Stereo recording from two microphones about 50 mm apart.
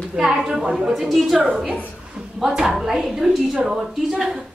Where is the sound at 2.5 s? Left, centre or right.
Centre.